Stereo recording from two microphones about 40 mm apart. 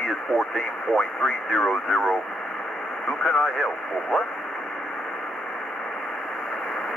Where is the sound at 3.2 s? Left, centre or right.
Centre.